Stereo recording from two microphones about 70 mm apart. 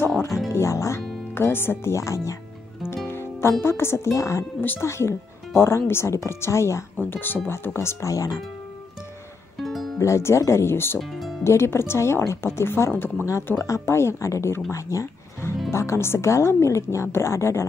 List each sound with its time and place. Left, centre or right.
0.5 s speech: left
1.3 s speech: left
3.1 s music: left
3.6 s speech: left
4.6 s speech: left
4.8 s speech: left
7.1 s speech: left
9.6 s music: centre
9.9 s speech: left
11.0 s speech: centre
11.4 s speech: left